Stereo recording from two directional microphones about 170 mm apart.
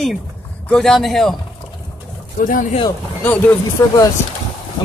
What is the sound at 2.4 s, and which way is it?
Speech, 50° left (ahead or behind).